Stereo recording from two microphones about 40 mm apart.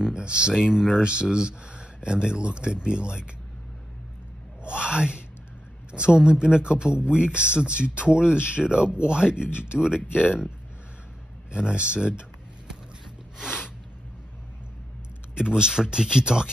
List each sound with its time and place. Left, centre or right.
0.0 s speech: right
4.6 s a sound: right
5.9 s speech: right
11.5 s speech: right
13.4 s a sound: centre
15.3 s speech: centre